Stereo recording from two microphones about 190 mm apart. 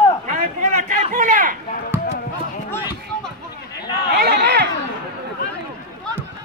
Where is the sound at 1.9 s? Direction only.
10° right (ahead or behind).